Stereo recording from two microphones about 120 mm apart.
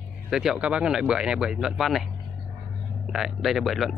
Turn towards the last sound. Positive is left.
turn(degrees=0)  # may be behind; listen again after turning